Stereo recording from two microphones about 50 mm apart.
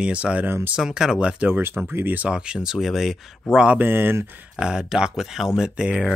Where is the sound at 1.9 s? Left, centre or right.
Right.